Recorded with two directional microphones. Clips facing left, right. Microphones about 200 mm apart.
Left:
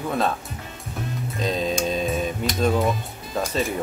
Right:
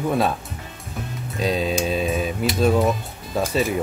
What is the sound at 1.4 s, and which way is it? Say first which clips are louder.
Speech: right 2 dB; 10° right (ahead or behind).